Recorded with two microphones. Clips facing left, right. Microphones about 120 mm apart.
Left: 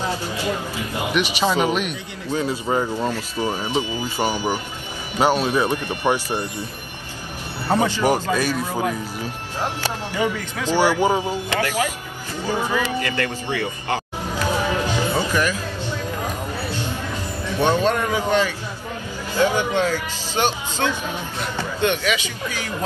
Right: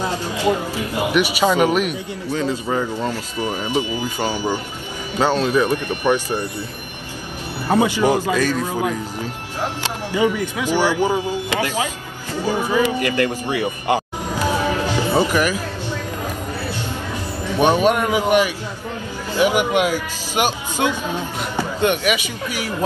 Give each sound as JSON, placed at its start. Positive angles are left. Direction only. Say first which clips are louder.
{"t": 0.1, "sound": "speech", "louder": "right 5 dB", "side_deg": -15}
{"t": 2.3, "sound": "speech", "louder": "even", "side_deg": 15}
{"t": 3.5, "sound": "speech", "louder": "right 5 dB", "side_deg": -15}
{"t": 4.2, "sound": "speech", "louder": "left 1 dB", "side_deg": 15}
{"t": 7.6, "sound": "speech", "louder": "right 2 dB", "side_deg": -15}
{"t": 10.1, "sound": "speech", "louder": "right 7 dB", "side_deg": -15}
{"t": 10.8, "sound": "speech", "louder": "left 1 dB", "side_deg": 15}
{"t": 11.6, "sound": "speech", "louder": "even", "side_deg": -15}
{"t": 14.9, "sound": "music", "louder": "right 4 dB", "side_deg": -15}
{"t": 17.1, "sound": "speech", "louder": "right 2 dB", "side_deg": -15}